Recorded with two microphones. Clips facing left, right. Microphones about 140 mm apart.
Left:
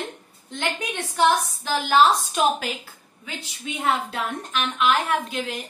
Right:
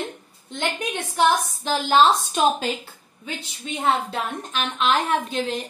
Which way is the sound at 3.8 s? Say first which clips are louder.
Right 2 dB; 30° right (ahead or behind).